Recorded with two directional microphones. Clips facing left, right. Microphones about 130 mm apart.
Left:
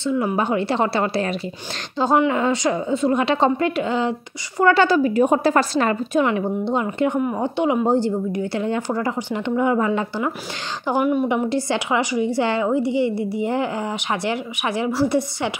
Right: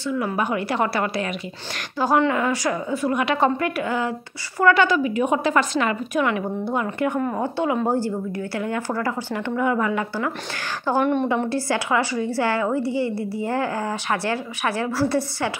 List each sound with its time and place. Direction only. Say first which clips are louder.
0.0 s a woman's voice: left 3 dB; 25° left (ahead or behind)
6.2 s speech: left 3 dB; 25° left (ahead or behind)
10.9 s a woman's voice: left 1 dB; 10° left (ahead or behind)